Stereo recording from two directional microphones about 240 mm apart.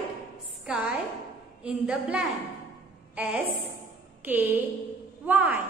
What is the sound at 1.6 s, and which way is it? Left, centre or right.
A woman's voice, centre.